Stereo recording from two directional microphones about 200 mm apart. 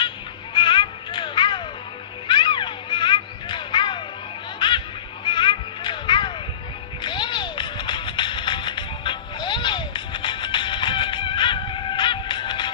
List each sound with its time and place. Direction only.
0.6 s music: 25° left (ahead or behind)
2.2 s a sound: 25° left (ahead or behind)
4.6 s music: 25° left (ahead or behind)